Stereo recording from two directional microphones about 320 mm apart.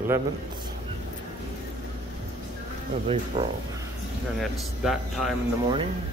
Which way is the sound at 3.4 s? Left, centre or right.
Centre.